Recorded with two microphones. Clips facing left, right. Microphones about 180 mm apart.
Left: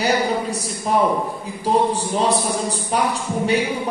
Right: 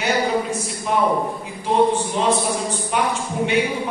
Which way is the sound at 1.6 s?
35° left (ahead or behind).